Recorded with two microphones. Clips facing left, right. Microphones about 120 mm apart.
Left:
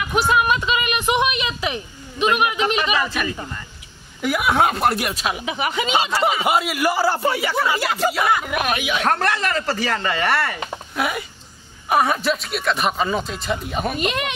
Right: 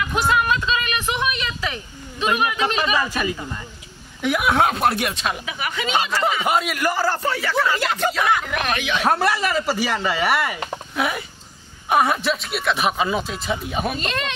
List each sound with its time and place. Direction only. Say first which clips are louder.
0.0 s a sound: left 2 dB; 10° left (ahead or behind)
2.7 s speech: left 1 dB; 15° left (ahead or behind)
3.1 s speech: right 1 dB; 10° right (ahead or behind)
4.2 s speech: even; centre (ahead or behind)
5.4 s speech: left 4 dB; 25° left (ahead or behind); by 9.0 s 10° left (ahead or behind)
9.0 s speech: right 2 dB; 10° right (ahead or behind)
13.9 s speech: left 3 dB; 15° left (ahead or behind)